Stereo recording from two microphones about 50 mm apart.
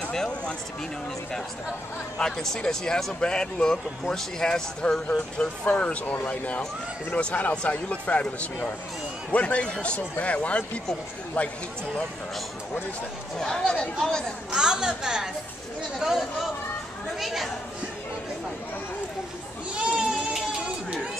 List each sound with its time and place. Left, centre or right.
2.1 s speech: centre; by 11.5 s left
13.4 s speech: centre
14.5 s speech: centre
16.0 s speech: centre
19.7 s goat: right